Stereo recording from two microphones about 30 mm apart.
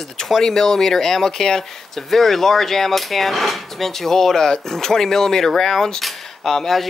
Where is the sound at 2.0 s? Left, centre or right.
Centre.